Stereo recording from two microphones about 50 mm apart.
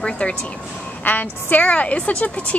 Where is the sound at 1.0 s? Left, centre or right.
Left.